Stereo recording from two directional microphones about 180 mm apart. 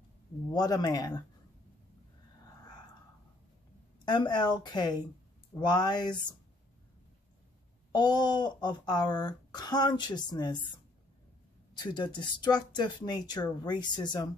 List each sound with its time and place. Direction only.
0.5 s speech: 20° left (ahead or behind)
4.0 s speech: 25° left (ahead or behind)
7.9 s speech: 25° left (ahead or behind)
11.7 s speech: 25° left (ahead or behind)